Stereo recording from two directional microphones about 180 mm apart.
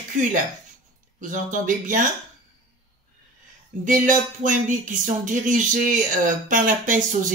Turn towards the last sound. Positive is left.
turn(degrees=-45)  # may be behind; listen again after turning